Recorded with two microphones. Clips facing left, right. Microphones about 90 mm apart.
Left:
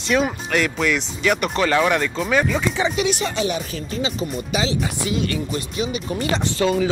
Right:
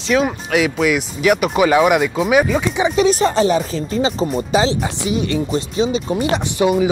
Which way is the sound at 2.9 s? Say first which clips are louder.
Right 8 dB; 35° right (ahead or behind).